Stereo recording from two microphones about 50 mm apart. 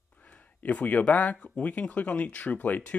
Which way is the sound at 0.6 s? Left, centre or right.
Left.